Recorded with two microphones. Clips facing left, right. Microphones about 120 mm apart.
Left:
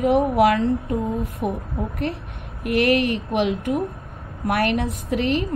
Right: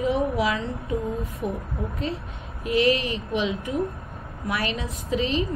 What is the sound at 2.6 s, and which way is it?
Speech, 65° left (ahead or behind).